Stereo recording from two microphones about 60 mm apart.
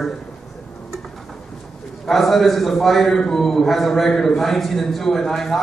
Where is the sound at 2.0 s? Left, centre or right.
Centre.